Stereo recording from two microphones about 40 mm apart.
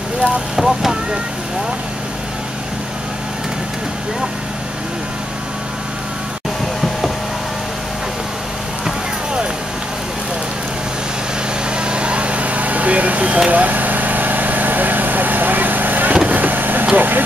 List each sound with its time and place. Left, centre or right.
0.6 s speech: centre
11.7 s vehicle: right
16.9 s speech: right